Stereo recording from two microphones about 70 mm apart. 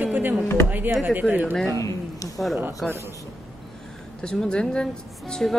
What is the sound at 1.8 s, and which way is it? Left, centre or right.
Speech, left.